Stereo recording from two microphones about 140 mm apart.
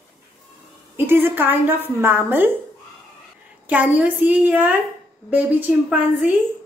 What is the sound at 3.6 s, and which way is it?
A woman's voice, 10° right (ahead or behind).